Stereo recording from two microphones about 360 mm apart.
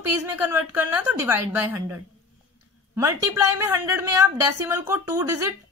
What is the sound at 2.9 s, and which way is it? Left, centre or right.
A woman's voice, centre.